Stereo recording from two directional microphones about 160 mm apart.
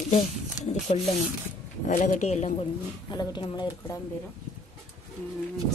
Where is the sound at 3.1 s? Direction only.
25° left (ahead or behind).